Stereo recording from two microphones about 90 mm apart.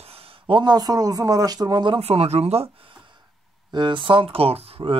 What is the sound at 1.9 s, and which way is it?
Speech, 90° right.